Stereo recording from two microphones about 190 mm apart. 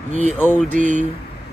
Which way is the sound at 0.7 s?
40° right (ahead or behind).